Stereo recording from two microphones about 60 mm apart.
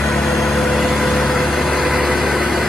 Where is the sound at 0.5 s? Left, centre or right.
Centre.